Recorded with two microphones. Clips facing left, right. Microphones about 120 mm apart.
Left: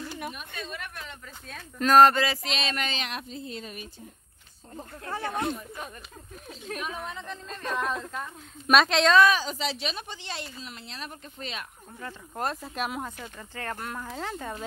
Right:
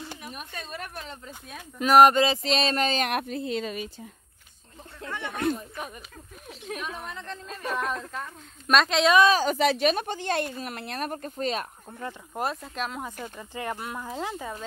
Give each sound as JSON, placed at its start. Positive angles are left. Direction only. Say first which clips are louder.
{"t": 0.3, "sound": "speech", "louder": "even", "side_deg": -40}
{"t": 1.5, "sound": "speech", "louder": "right 1 dB", "side_deg": -10}
{"t": 2.4, "sound": "speech", "louder": "right 6 dB", "side_deg": -35}
{"t": 3.0, "sound": "speech", "louder": "right 8 dB", "side_deg": -60}
{"t": 4.7, "sound": "speech", "louder": "left 2 dB", "side_deg": 35}
{"t": 6.7, "sound": "a woman's voice", "louder": "even", "side_deg": 0}
{"t": 9.4, "sound": "speech", "louder": "right 9 dB", "side_deg": -55}
{"t": 12.4, "sound": "a woman's voice", "louder": "even", "side_deg": 0}
{"t": 13.0, "sound": "speech", "louder": "right 2 dB", "side_deg": -10}